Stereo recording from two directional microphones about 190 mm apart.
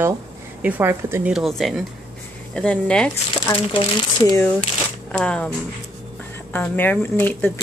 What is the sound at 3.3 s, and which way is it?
Speech, 25° left (ahead or behind).